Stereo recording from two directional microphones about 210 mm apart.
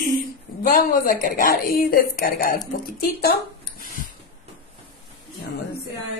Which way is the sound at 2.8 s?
45° left (ahead or behind).